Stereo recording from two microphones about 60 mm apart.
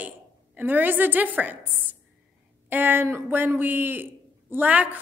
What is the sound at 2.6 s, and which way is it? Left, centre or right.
A woman's voice, right.